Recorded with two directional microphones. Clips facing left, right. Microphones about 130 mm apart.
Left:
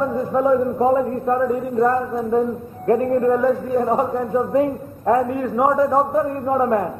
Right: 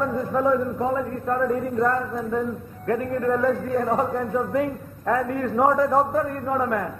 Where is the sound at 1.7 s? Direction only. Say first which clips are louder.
Left 5 dB; 25° left (ahead or behind); by 6.2 s 5° left (ahead or behind).